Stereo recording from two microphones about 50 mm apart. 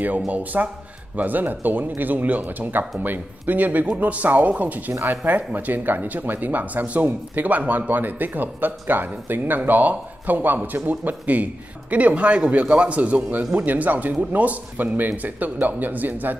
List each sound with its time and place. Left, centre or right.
0.3 s speech: right